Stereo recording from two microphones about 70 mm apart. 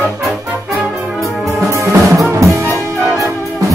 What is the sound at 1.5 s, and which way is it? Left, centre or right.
Music, right.